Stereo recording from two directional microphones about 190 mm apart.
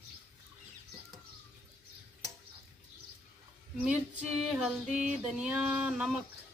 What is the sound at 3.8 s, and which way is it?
Speech, 5° right (ahead or behind).